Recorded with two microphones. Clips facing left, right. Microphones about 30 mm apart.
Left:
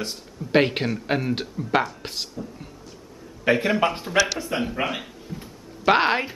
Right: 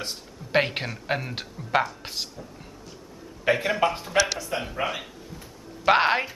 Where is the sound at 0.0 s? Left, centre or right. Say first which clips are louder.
Left 3 dB; centre.